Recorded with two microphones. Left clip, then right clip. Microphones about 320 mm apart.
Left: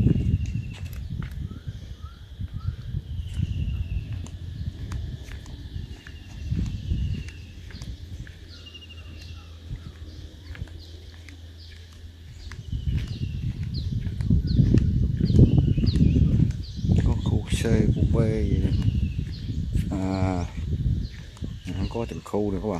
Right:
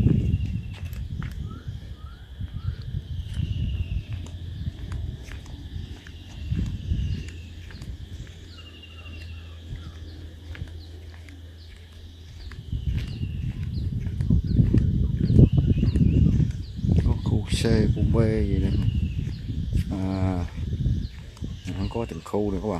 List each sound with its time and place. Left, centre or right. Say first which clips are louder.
0.0 s walk: even; centre
6.5 s a sound: even; centre
12.4 s horse: left 1 dB; centre